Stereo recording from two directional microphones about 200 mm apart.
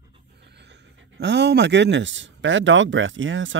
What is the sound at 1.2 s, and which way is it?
Speech, 60° right (ahead or behind).